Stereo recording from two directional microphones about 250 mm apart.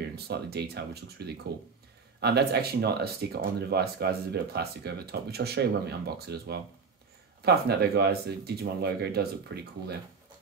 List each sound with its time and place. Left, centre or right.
0.1 s speech: right